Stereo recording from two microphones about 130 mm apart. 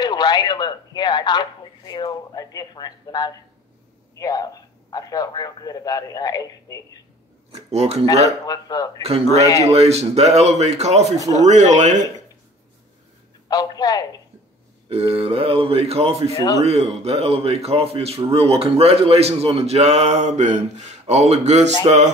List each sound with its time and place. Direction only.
0.0 s a man's voice: 35° left (ahead or behind)
7.5 s a man's voice: 55° right (ahead or behind)
8.1 s a man's voice: 30° left (ahead or behind)
9.7 s a man's voice: 55° right (ahead or behind); by 12.1 s 70° right (ahead or behind)
13.5 s a man's voice: 30° left (ahead or behind)
14.9 s a man's voice: 50° right (ahead or behind)